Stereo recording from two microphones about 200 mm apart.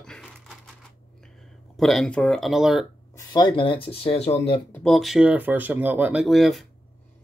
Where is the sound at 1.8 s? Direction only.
Centre (ahead or behind).